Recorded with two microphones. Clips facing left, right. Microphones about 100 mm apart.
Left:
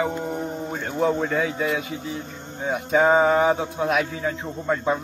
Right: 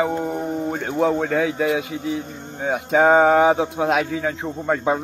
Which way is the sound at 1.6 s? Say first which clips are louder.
Right 4 dB; 90° right.